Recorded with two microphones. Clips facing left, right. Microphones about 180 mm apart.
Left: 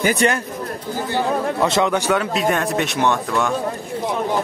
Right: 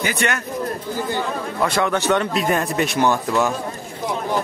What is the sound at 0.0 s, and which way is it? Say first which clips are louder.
Speech: left 5 dB; 40° left (ahead or behind).